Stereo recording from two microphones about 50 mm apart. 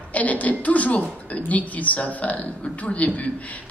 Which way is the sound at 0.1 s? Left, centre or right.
Left.